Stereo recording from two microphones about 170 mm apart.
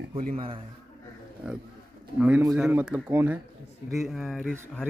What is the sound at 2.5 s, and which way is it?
A man's voice, 5° right (ahead or behind).